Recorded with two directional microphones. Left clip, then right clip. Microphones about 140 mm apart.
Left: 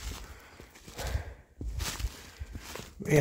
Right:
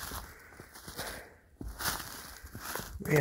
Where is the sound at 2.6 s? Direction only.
30° right (ahead or behind).